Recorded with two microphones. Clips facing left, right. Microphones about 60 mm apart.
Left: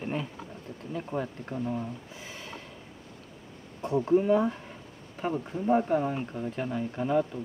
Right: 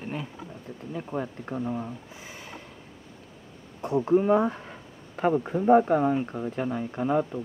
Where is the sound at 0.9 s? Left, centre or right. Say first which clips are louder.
Right 1 dB; centre.